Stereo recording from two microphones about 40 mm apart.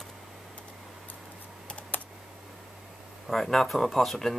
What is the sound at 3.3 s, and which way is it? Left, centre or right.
Speech, centre.